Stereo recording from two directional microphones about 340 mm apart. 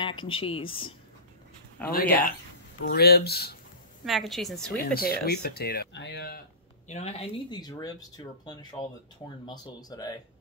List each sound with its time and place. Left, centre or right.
0.0 s speech: centre
4.0 s a woman's voice: centre
4.7 s speech: left; by 10.1 s centre